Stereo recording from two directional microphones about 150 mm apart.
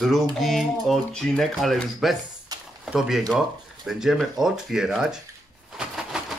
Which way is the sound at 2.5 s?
25° right (ahead or behind).